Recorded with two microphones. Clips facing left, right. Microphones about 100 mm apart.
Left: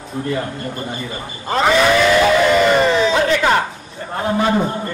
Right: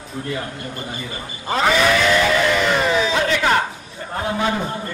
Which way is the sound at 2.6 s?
Centre (ahead or behind).